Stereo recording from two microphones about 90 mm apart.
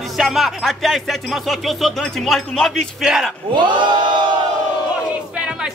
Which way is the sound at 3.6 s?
60° right (ahead or behind).